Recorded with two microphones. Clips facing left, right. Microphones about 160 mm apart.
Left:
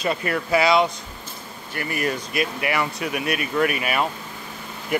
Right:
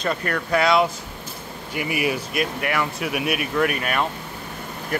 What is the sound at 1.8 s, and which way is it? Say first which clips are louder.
Speech: right 2 dB; 10° right (ahead or behind).